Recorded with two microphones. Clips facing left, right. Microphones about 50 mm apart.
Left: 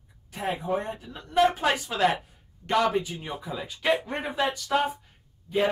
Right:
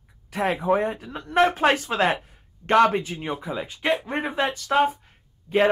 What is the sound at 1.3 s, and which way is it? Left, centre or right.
Speech, right.